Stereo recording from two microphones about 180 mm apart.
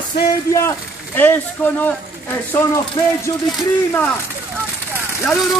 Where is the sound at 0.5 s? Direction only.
10° left (ahead or behind).